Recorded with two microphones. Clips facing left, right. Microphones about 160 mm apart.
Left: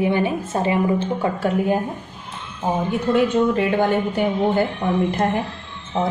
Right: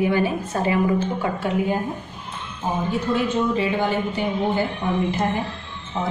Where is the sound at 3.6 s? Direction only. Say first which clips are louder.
Left 3 dB; 55° left (ahead or behind).